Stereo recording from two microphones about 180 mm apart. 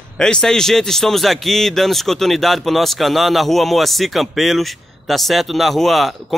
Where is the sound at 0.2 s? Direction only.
5° left (ahead or behind).